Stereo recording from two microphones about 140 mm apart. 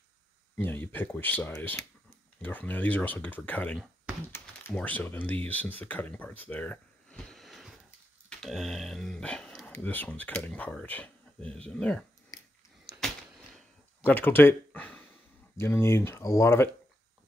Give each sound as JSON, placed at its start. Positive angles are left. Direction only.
{"t": 0.6, "sound": "speech", "side_deg": 15}
{"t": 12.3, "sound": "a sound", "side_deg": 25}
{"t": 14.0, "sound": "speech", "side_deg": 15}